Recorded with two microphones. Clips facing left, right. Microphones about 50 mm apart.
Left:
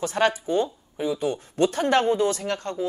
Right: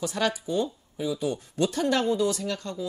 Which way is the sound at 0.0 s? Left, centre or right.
Left.